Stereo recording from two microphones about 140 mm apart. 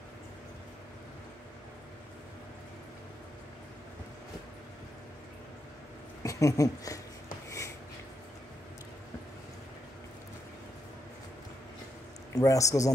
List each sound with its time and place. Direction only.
6.2 s speech: 25° left (ahead or behind)
7.4 s a sound: 20° left (ahead or behind)
12.3 s a man's voice: 25° left (ahead or behind)